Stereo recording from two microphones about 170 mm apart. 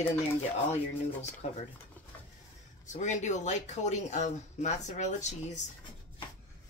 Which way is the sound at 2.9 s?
45° left (ahead or behind).